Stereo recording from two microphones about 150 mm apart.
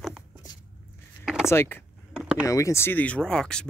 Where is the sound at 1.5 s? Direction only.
15° left (ahead or behind).